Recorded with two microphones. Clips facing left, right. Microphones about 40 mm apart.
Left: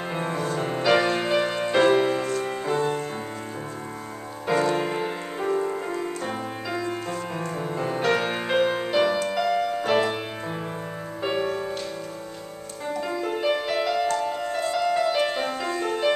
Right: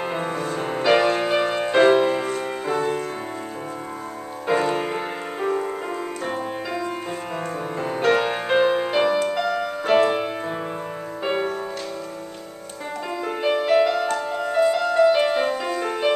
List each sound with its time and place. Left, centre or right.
0.1 s music: centre
4.5 s music: centre
11.2 s music: centre
13.1 s music: centre